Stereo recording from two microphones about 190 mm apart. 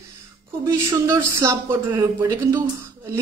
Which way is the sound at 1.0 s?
15° right (ahead or behind).